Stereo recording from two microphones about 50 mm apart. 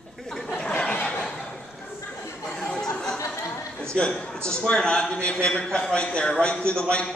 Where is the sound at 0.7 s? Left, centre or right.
Left.